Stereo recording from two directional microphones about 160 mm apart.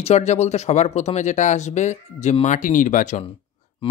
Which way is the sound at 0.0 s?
45° left (ahead or behind).